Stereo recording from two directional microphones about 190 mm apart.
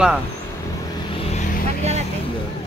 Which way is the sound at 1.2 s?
35° left (ahead or behind).